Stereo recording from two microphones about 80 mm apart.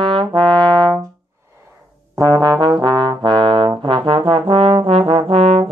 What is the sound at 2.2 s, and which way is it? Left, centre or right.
Trombone, right.